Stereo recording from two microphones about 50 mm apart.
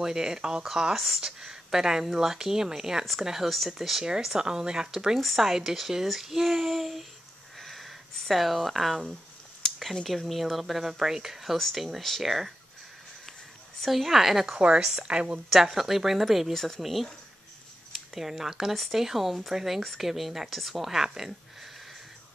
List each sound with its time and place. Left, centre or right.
0.0 s speech: centre
0.9 s a child's voice: centre
7.5 s a sound: centre
10.0 s a child's voice: centre
13.7 s a child's voice: centre
14.8 s speech: centre
15.5 s a child's voice: centre